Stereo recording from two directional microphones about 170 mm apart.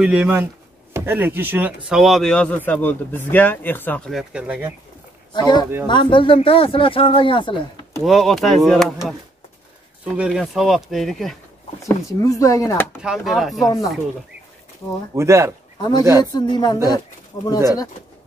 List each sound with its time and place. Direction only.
0.0 s speech: 5° right (ahead or behind); by 4.1 s 10° left (ahead or behind)
4.1 s speech: 5° right (ahead or behind)
5.3 s speech: 25° left (ahead or behind)
8.0 s speech: centre (ahead or behind)
11.8 s speech: 20° left (ahead or behind)
13.0 s speech: centre (ahead or behind)
13.7 s speech: 20° left (ahead or behind)
15.1 s speech: 15° right (ahead or behind)
16.3 s speech: 25° left (ahead or behind)